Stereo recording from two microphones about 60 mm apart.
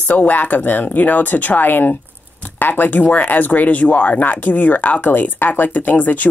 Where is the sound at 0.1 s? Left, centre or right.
Left.